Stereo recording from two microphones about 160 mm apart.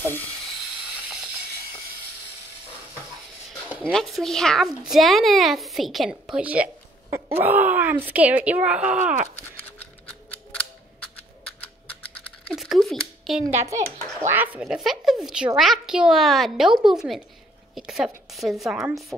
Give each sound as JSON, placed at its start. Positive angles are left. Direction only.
{"t": 3.6, "sound": "speech", "side_deg": 5}
{"t": 9.6, "sound": "scissors", "side_deg": 10}
{"t": 12.4, "sound": "a sound", "side_deg": 0}
{"t": 14.2, "sound": "a woman's voice", "side_deg": -10}
{"t": 17.7, "sound": "a sound", "side_deg": -5}
{"t": 18.7, "sound": "a woman's voice", "side_deg": -5}